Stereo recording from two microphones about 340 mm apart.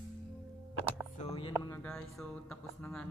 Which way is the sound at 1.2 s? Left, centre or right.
Centre.